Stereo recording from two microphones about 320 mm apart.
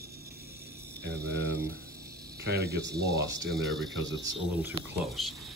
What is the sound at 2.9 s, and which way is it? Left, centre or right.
Speech, centre.